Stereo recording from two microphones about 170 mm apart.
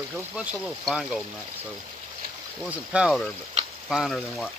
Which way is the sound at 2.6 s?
5° right (ahead or behind).